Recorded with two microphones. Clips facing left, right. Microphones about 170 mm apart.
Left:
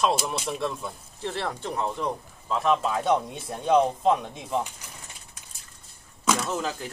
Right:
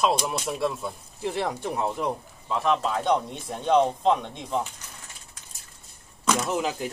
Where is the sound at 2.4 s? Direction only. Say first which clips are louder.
Left 1 dB; centre (ahead or behind).